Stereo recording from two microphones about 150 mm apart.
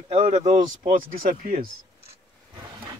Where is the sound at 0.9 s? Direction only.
70° right (ahead or behind).